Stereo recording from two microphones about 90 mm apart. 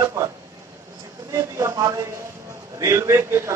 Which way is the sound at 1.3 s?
35° right (ahead or behind).